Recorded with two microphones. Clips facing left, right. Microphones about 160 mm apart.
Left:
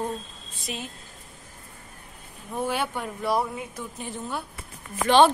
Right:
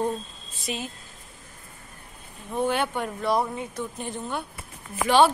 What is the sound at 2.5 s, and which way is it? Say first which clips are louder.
Speech: right 3 dB; 5° left (ahead or behind).